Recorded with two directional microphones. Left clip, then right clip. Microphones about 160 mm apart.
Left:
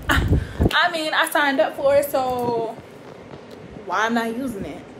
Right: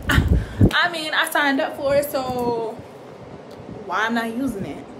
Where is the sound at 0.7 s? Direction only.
10° right (ahead or behind).